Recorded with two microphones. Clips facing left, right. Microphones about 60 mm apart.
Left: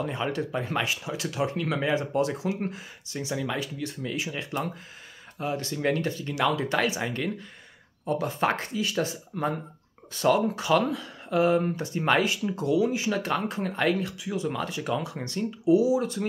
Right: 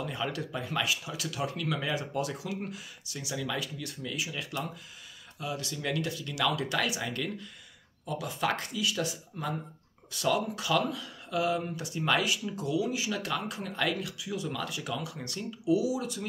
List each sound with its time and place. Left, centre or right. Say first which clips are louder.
0.0 s speech: left 5 dB; left